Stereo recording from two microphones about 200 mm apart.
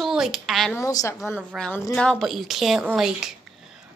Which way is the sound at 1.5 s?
Centre (ahead or behind).